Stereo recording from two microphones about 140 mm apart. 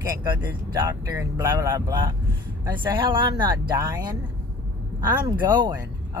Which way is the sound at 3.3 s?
30° right (ahead or behind).